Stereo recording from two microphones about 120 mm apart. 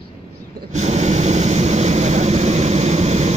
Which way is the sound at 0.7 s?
70° right (ahead or behind).